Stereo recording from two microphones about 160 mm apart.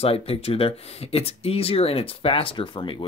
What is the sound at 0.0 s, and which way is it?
Speech, 40° left (ahead or behind).